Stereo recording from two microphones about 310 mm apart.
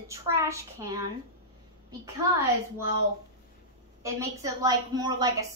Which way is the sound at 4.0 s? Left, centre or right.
Centre.